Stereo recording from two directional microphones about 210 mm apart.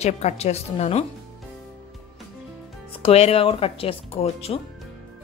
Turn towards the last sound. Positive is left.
turn(degrees=30)  # may be behind; listen again after turning